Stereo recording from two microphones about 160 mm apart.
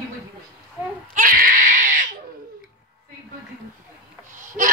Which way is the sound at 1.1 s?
60° right (ahead or behind).